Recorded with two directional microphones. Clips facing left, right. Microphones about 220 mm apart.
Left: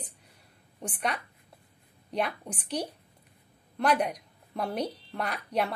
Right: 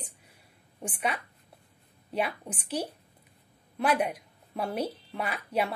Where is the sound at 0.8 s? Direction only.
5° right (ahead or behind).